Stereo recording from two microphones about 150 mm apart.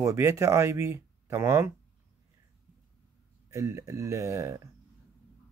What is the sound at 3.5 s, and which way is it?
Speech, 20° right (ahead or behind).